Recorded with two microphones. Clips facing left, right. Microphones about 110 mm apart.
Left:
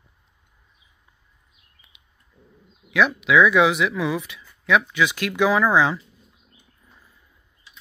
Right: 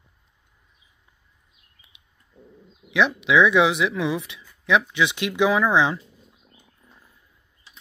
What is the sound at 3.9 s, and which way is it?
Speech, 20° right (ahead or behind).